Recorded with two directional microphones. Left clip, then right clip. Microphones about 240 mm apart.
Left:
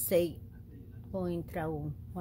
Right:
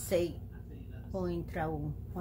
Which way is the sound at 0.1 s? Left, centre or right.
Left.